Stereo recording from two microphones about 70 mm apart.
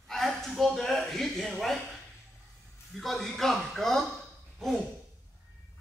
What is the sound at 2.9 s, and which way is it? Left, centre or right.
A man's voice, centre.